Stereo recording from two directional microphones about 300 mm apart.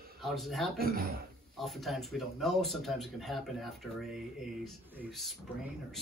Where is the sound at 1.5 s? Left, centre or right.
Centre.